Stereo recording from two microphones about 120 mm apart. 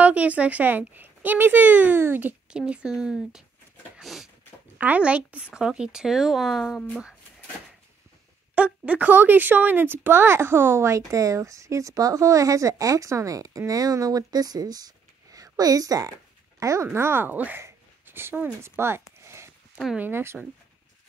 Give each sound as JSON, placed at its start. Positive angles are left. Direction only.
{"t": 0.0, "sound": "speech", "side_deg": -10}
{"t": 4.0, "sound": "a sound", "side_deg": 0}
{"t": 4.7, "sound": "speech", "side_deg": -15}
{"t": 8.5, "sound": "a woman's voice", "side_deg": -10}
{"t": 19.7, "sound": "speech", "side_deg": -5}
{"t": 20.0, "sound": "speech", "side_deg": -20}